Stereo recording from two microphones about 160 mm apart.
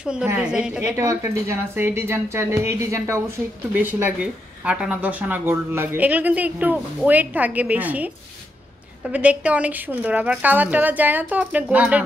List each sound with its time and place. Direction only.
0.0 s a woman's voice: 10° right (ahead or behind)
0.9 s speech: 20° right (ahead or behind)
9.1 s speech: 10° right (ahead or behind)